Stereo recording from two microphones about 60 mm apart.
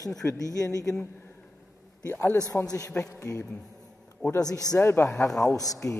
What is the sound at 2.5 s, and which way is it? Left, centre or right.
Speech, left.